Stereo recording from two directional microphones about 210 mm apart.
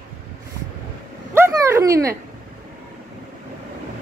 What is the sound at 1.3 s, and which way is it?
Dog, 10° right (ahead or behind).